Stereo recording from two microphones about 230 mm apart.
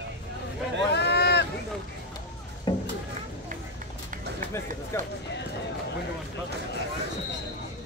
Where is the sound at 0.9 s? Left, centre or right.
Left.